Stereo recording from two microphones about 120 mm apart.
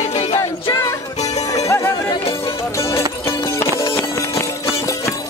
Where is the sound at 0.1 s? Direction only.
60° left (ahead or behind).